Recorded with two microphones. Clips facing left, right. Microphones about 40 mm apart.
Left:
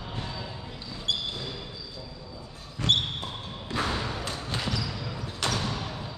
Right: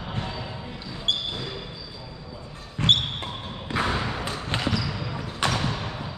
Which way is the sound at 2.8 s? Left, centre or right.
Right.